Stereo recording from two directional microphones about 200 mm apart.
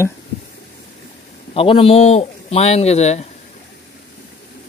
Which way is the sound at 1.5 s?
30° left (ahead or behind).